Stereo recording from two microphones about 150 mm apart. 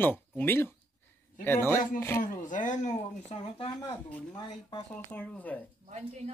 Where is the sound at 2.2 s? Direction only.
60° left (ahead or behind).